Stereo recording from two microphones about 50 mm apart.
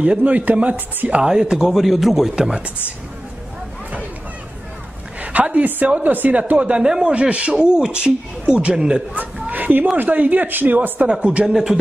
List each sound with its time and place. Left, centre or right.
0.0 s speech: right
1.2 s a man's voice: centre
5.2 s a woman's voice: right
6.7 s a man's voice: centre
9.1 s a sound: right
9.9 s a woman's voice: right
11.1 s speech: right
11.4 s a man's voice: centre